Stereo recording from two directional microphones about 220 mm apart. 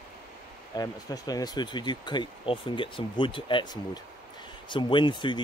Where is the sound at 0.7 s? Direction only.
15° left (ahead or behind).